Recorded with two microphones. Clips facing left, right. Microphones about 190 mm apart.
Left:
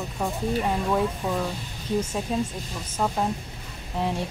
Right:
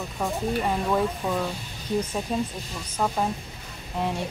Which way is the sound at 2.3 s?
Centre (ahead or behind).